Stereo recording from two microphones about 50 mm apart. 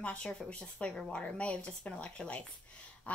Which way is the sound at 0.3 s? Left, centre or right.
Left.